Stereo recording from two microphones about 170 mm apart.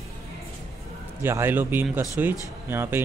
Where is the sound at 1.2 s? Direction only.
15° right (ahead or behind).